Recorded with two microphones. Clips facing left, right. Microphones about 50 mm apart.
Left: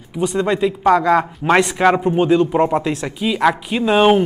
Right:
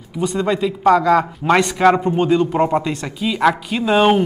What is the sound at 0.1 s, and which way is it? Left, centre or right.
Speech, centre.